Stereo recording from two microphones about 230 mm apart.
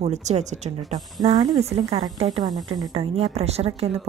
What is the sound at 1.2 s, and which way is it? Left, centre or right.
A woman's voice, centre.